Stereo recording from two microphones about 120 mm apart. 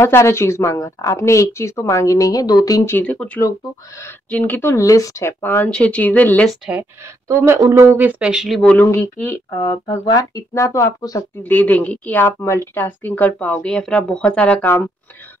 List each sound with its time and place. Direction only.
0.0 s a woman's voice: 20° left (ahead or behind)
2.9 s a woman's voice: 15° left (ahead or behind)
4.3 s a woman's voice: 15° left (ahead or behind)
5.4 s a woman's voice: 20° left (ahead or behind)
6.6 s speech: 10° right (ahead or behind)
7.2 s speech: 25° right (ahead or behind); by 8.5 s 5° right (ahead or behind)
8.7 s a woman's voice: 25° left (ahead or behind)
11.4 s a woman's voice: 15° left (ahead or behind)